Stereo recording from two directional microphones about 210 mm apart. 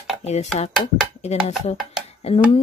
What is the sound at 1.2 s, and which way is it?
Speech, 30° left (ahead or behind).